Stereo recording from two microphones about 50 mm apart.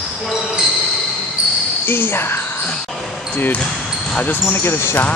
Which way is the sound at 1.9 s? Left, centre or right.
Left.